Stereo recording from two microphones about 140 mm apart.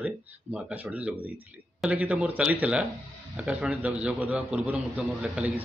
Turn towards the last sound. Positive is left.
turn(degrees=-10)  # may be behind; listen again after turning